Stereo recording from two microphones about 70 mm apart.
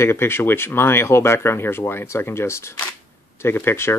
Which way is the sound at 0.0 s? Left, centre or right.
Left.